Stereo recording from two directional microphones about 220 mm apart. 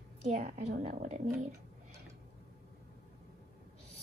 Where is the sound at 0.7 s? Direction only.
35° right (ahead or behind).